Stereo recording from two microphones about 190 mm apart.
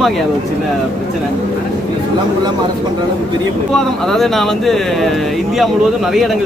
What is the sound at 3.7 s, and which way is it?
Speech, centre (ahead or behind).